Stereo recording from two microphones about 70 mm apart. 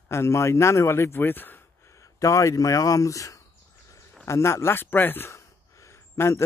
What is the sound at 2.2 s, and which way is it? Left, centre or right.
A man's voice, left.